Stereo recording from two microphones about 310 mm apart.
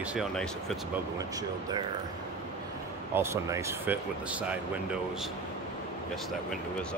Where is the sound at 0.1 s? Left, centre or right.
Centre.